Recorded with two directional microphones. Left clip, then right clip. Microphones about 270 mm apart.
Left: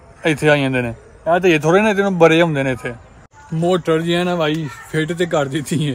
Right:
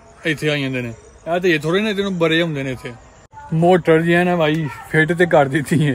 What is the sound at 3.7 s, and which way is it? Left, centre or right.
A man's voice, centre.